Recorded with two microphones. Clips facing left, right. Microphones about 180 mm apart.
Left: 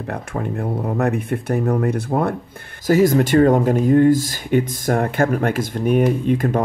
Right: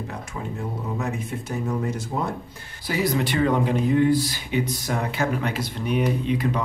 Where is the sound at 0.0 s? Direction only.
60° left (ahead or behind).